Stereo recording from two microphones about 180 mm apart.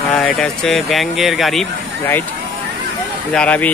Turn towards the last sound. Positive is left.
turn(degrees=10)  # may be behind; listen again after turning